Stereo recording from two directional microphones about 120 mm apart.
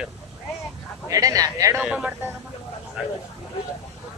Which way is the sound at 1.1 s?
30° right (ahead or behind).